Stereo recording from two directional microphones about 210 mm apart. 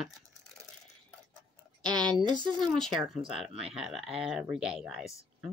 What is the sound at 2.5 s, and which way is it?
Speech, centre (ahead or behind).